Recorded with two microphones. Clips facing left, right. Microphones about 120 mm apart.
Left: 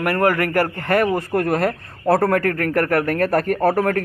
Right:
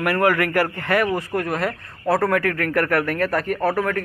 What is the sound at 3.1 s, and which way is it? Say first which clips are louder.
Speech: left 3 dB; 45° left (ahead or behind).